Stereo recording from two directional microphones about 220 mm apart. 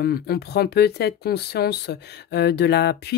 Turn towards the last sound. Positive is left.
turn(degrees=50)  # may be behind; listen again after turning